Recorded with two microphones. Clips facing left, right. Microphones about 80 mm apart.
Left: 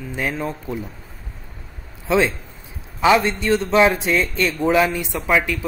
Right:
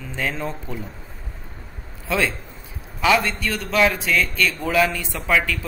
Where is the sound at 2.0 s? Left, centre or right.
Left.